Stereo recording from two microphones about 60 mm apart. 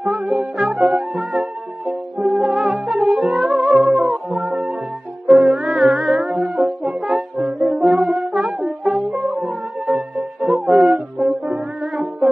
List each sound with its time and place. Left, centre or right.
0.0 s music: centre
3.2 s music: centre
6.8 s brass instrument: centre
8.5 s music: centre